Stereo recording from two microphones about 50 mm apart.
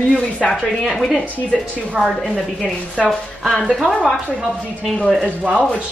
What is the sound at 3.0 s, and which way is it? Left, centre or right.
Speech, centre.